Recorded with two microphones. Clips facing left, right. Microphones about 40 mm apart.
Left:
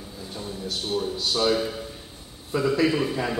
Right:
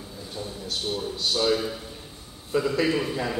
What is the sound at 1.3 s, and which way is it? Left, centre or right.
A man's voice, centre.